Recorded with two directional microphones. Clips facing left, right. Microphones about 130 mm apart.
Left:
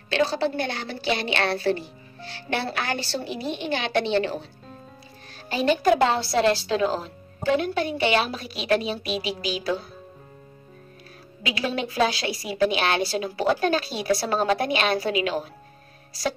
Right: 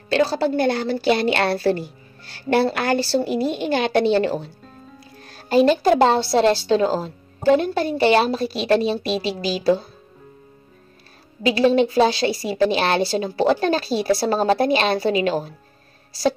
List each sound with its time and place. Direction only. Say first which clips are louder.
0.1 s a woman's voice: right 4 dB; 40° right (ahead or behind)
5.7 s speech: left 1 dB; 30° right (ahead or behind)
11.4 s speech: right 11 dB; 30° right (ahead or behind)
16.1 s music: right 7 dB; 30° right (ahead or behind)